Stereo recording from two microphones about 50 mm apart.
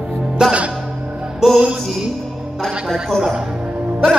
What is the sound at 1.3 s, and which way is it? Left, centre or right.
Speech, centre.